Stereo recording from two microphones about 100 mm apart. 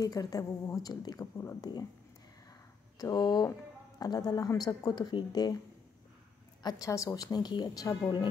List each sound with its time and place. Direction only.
0.0 s speech: 35° left (ahead or behind)
3.0 s speech: 40° left (ahead or behind)
6.6 s speech: 40° left (ahead or behind)